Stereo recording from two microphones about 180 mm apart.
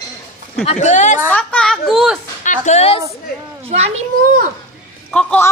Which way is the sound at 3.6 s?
35° right (ahead or behind).